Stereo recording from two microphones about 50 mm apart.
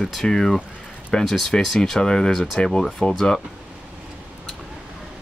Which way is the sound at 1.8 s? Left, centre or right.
Centre.